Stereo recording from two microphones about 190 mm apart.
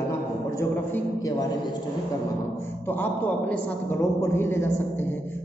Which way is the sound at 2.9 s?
10° left (ahead or behind).